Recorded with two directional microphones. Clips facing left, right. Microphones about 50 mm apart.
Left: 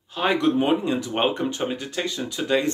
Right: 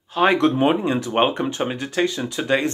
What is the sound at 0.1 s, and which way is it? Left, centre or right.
Speech, right.